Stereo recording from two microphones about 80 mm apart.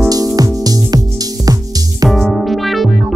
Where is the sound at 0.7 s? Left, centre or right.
Right.